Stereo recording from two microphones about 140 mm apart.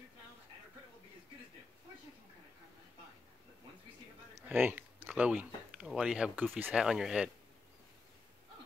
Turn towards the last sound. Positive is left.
turn(degrees=-5)  # may be behind; listen again after turning